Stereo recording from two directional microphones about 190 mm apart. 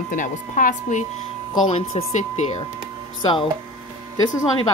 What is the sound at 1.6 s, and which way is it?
Speech, 35° left (ahead or behind).